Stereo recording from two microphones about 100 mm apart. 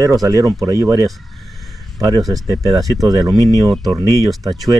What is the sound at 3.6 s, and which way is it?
Speech, centre (ahead or behind).